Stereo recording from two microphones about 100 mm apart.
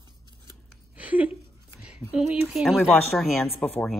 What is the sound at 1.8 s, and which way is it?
Speech, 10° right (ahead or behind).